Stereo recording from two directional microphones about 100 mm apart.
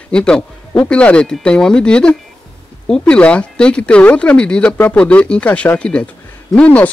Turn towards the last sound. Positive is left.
turn(degrees=15)  # may be behind; listen again after turning